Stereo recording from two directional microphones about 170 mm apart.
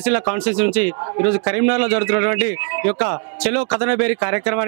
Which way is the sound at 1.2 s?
10° right (ahead or behind).